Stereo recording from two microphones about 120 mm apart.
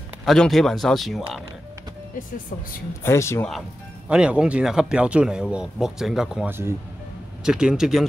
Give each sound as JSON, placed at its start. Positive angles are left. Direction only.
{"t": 0.2, "sound": "a man's voice", "side_deg": 0}
{"t": 3.0, "sound": "speech", "side_deg": 25}
{"t": 4.1, "sound": "a man's voice", "side_deg": -5}